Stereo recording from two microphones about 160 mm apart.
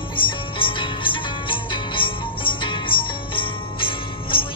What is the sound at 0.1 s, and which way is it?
Music, 30° left (ahead or behind).